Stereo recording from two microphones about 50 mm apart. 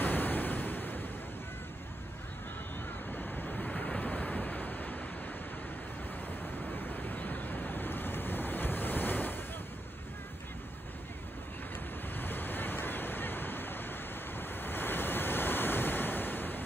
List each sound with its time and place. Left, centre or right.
0.0 s waves: left
3.1 s waves: left
6.7 s waves: left
12.2 s waves: left